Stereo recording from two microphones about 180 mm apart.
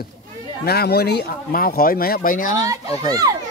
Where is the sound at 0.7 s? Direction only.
60° left (ahead or behind).